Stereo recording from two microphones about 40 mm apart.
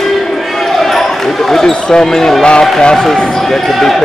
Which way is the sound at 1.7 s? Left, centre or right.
Centre.